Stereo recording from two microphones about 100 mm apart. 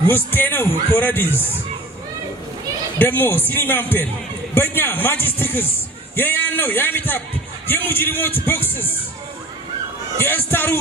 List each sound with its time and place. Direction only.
0.0 s a man's voice: 20° left (ahead or behind)
3.0 s a man's voice: 20° left (ahead or behind)
10.1 s a man's voice: 20° left (ahead or behind)